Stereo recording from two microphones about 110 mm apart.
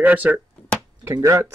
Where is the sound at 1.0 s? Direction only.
30° right (ahead or behind).